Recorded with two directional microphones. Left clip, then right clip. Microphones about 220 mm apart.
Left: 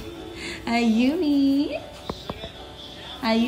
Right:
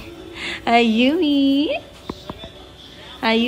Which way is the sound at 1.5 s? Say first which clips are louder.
Right 5 dB; 5° right (ahead or behind).